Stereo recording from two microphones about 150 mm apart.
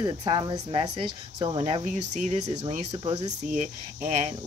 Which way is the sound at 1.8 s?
55° right (ahead or behind).